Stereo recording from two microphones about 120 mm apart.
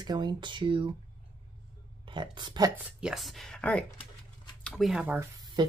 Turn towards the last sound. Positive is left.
turn(degrees=-35)  # may be behind; listen again after turning